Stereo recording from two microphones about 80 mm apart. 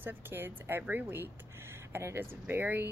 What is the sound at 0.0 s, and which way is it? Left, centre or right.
Speech, right.